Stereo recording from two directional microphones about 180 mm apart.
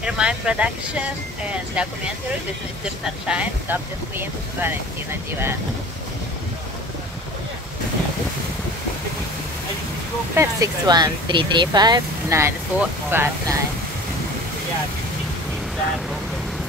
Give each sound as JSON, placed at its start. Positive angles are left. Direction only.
{"t": 0.0, "sound": "speech", "side_deg": -5}
{"t": 3.3, "sound": "speech", "side_deg": -5}
{"t": 10.3, "sound": "speech", "side_deg": -15}